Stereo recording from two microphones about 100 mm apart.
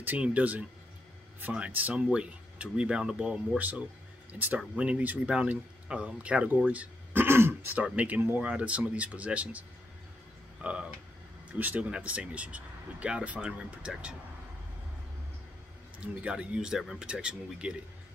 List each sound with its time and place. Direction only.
0.0 s speech: 15° right (ahead or behind)
16.2 s speech: 10° right (ahead or behind)